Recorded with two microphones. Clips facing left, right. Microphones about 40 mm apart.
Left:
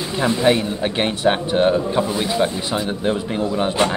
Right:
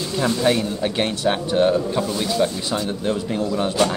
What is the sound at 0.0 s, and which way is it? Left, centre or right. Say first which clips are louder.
Speech: left 2 dB; left.